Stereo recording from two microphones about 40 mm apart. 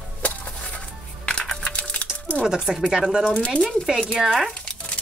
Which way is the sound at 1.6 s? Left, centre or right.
Left.